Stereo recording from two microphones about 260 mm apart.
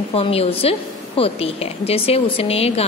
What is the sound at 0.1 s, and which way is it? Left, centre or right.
A woman's voice, left.